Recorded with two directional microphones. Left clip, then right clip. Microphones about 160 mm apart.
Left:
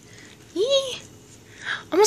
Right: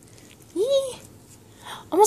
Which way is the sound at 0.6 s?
20° right (ahead or behind).